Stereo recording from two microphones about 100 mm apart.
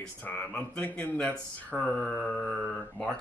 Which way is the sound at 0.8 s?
15° left (ahead or behind).